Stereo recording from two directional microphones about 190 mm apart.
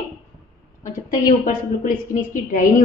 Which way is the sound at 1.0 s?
45° left (ahead or behind).